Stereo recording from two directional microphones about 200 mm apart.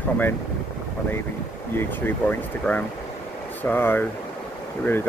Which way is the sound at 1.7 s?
10° left (ahead or behind).